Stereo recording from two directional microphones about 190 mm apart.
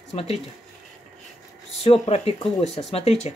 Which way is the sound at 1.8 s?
35° left (ahead or behind).